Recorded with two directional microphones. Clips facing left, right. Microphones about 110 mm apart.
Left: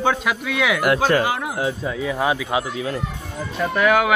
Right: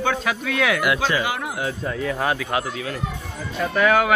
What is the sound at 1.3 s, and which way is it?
Speech, 30° left (ahead or behind).